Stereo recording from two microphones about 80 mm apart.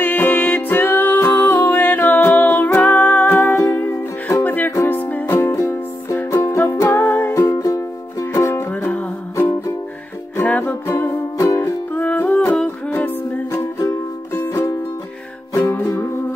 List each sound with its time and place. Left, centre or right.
0.0 s music: left
8.7 s music: centre
9.4 s music: left
10.9 s music: left
11.9 s music: left
13.7 s music: left